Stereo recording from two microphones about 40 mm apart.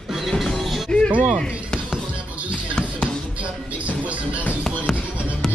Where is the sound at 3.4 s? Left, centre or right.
Right.